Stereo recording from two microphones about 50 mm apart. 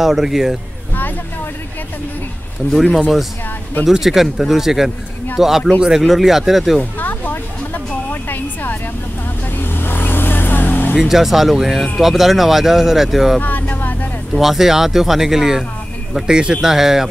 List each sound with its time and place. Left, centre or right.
0.0 s speech: centre
0.9 s a sound: left
2.7 s speech: centre
5.8 s speech: centre
7.0 s music: left
9.6 s vehicle: left
11.0 s speech: centre
13.4 s music: left
14.4 s speech: centre